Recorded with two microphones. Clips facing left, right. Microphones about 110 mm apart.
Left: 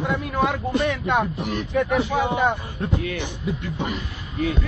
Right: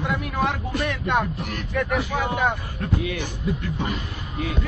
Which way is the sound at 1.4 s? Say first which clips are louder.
Left 4 dB; 25° left (ahead or behind).